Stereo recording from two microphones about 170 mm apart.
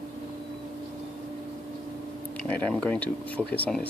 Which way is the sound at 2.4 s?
5° left (ahead or behind).